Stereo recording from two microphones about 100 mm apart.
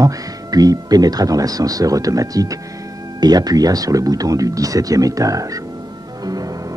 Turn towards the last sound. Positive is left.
turn(degrees=-40)  # may be behind; listen again after turning